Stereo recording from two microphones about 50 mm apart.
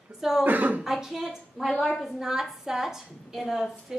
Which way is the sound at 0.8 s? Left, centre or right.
Centre.